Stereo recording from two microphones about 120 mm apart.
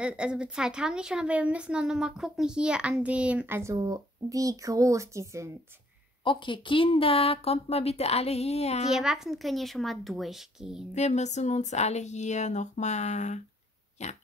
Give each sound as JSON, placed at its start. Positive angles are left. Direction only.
{"t": 0.0, "sound": "a woman's voice", "side_deg": -10}
{"t": 3.7, "sound": "speech", "side_deg": -35}
{"t": 6.2, "sound": "speech", "side_deg": 40}
{"t": 8.9, "sound": "a woman's voice", "side_deg": -5}
{"t": 10.9, "sound": "speech", "side_deg": 75}
{"t": 14.0, "sound": "pig", "side_deg": 70}